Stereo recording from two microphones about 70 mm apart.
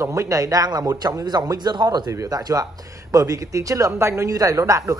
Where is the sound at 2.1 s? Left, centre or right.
Right.